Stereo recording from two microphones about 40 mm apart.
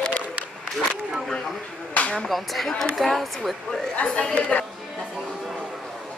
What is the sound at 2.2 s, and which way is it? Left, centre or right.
Speech, centre.